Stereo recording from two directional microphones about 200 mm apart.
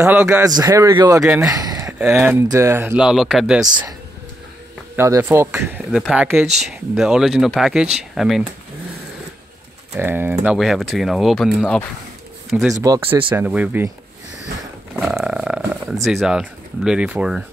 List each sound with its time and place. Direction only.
0.0 s speech: 10° right (ahead or behind)
1.4 s a sound: 20° right (ahead or behind)
2.1 s speech: 10° right (ahead or behind)
4.9 s speech: 15° right (ahead or behind)
9.9 s speech: 10° right (ahead or behind)
12.8 s speech: 15° right (ahead or behind)
15.0 s speech: centre (ahead or behind)